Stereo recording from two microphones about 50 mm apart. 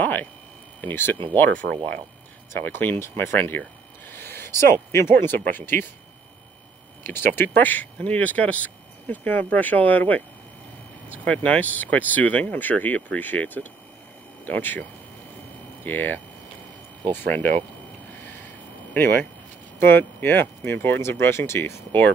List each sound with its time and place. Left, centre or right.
0.0 s a sound: left
0.7 s speech: left
2.6 s speech: left
4.1 s a sound: left
5.1 s speech: left
7.0 s speech: left
19.8 s speech: left
21.0 s speech: left